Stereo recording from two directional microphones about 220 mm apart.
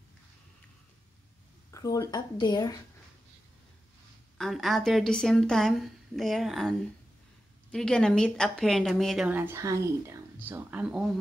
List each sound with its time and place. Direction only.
1.7 s speech: 15° left (ahead or behind)
4.4 s speech: centre (ahead or behind)